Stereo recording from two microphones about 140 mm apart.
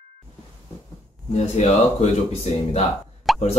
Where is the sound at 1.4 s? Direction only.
50° left (ahead or behind).